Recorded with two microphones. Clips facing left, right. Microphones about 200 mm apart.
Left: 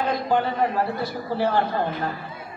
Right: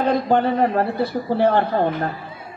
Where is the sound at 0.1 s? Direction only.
60° right (ahead or behind).